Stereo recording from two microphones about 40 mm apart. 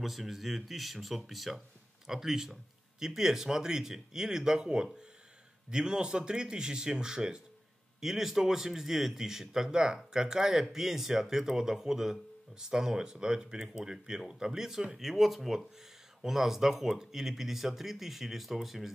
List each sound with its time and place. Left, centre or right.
0.0 s speech: centre
8.0 s speech: centre